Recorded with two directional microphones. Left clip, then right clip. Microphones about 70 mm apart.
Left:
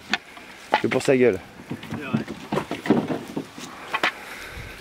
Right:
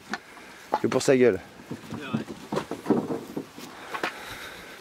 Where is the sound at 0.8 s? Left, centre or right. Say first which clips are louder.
Even; right.